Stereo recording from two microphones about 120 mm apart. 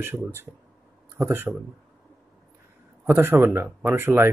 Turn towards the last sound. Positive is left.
turn(degrees=-20)  # may be behind; listen again after turning